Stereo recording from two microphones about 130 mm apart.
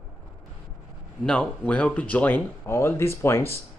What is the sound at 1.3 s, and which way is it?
Speech, 10° left (ahead or behind).